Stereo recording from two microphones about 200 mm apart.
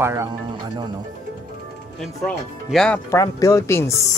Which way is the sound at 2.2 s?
5° left (ahead or behind).